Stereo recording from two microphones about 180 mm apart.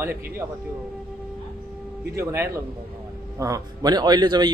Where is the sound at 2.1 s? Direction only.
15° right (ahead or behind).